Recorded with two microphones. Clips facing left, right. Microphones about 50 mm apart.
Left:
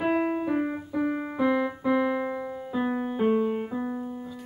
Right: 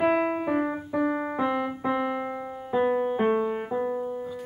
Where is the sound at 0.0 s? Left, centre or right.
Right.